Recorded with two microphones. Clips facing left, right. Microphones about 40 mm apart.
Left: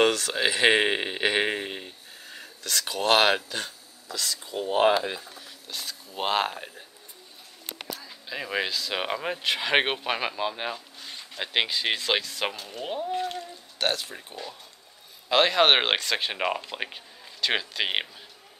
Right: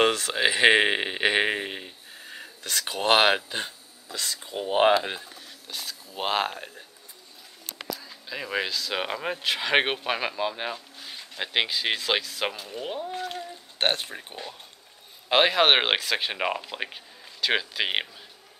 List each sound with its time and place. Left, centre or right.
0.0 s speech: right
4.4 s speech: centre
5.7 s speech: centre
8.3 s speech: centre
13.7 s speech: right
15.5 s speech: centre